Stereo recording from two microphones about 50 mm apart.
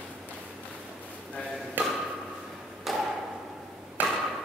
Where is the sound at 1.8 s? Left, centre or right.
Right.